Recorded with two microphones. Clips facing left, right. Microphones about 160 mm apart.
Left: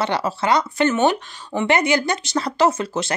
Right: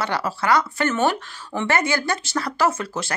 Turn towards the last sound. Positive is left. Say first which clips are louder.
# left 3 dB
turn(degrees=20)  # may be behind; listen again after turning